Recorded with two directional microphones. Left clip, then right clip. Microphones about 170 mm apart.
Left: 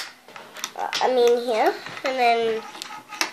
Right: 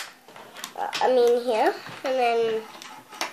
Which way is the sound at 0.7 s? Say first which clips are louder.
Even; 10° left (ahead or behind).